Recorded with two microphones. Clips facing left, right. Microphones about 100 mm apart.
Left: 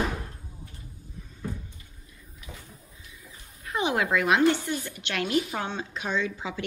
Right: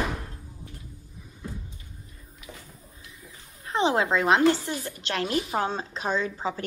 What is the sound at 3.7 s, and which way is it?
Speech, 30° right (ahead or behind).